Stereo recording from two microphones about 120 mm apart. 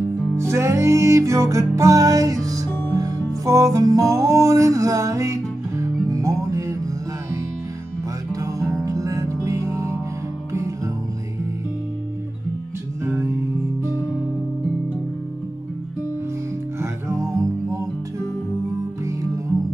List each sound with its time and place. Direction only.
0.4 s music: 25° right (ahead or behind)
8.3 s music: 25° right (ahead or behind)
13.0 s music: 20° right (ahead or behind)
17.1 s music: 25° right (ahead or behind)